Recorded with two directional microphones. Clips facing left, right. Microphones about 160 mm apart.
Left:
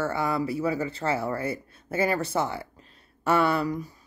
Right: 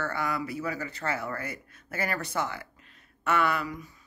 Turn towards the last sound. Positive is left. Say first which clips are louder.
# left 5 dB
turn(degrees=35)  # may be behind; listen again after turning